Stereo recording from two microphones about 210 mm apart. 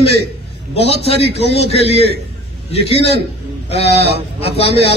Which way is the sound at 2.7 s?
30° left (ahead or behind).